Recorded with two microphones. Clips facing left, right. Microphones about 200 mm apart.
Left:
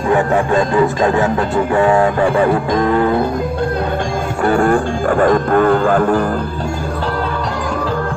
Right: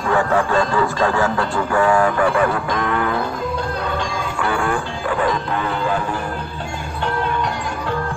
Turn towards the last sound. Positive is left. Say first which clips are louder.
# left 9 dB
turn(degrees=50)  # may be behind; listen again after turning